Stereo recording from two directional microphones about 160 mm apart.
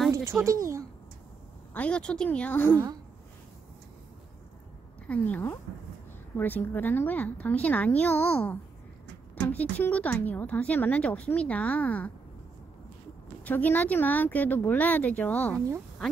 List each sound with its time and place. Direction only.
0.1 s a sound: 15° right (ahead or behind)
1.7 s a woman's voice: 10° left (ahead or behind)
5.0 s a woman's voice: 10° left (ahead or behind)
13.4 s a woman's voice: 10° left (ahead or behind)